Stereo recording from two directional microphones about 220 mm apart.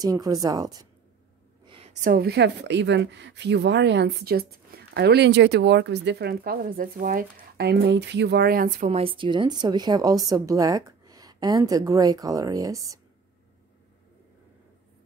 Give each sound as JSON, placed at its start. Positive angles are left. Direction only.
{"t": 0.0, "sound": "a woman's voice", "side_deg": -15}
{"t": 1.7, "sound": "a sound", "side_deg": -25}
{"t": 2.0, "sound": "a woman's voice", "side_deg": -45}